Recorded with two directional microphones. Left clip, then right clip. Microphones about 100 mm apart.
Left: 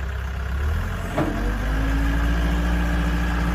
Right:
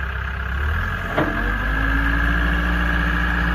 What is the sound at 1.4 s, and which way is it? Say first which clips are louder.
Vehicle: right 6 dB; 25° left (ahead or behind).